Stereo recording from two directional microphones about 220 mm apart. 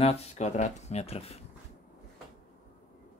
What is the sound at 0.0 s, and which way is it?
Speech, 25° left (ahead or behind).